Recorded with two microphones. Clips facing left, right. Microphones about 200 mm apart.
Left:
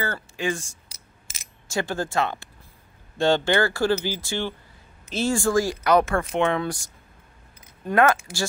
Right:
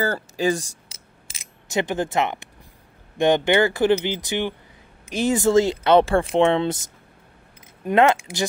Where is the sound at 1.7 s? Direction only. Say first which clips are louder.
Right 3 dB; 20° right (ahead or behind).